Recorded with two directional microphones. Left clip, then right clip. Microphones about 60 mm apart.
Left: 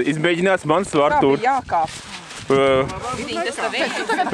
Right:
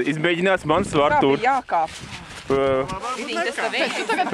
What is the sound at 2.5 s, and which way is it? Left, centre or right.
Speech, left.